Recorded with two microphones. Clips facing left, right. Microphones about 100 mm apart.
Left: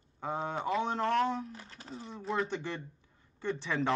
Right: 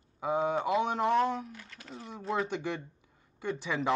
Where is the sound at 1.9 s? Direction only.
Centre (ahead or behind).